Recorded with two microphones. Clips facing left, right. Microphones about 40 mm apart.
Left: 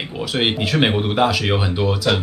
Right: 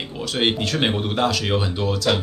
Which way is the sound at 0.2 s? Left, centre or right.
Centre.